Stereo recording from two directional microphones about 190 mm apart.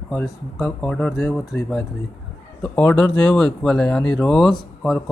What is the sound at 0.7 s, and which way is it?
Speech, 5° left (ahead or behind).